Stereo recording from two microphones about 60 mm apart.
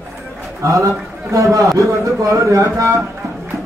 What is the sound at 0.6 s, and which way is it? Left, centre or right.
A man's voice, right.